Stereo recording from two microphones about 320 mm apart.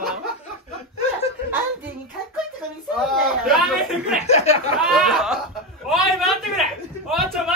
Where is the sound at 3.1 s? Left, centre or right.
Centre.